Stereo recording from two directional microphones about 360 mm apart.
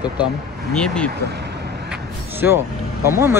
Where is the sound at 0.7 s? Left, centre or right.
Centre.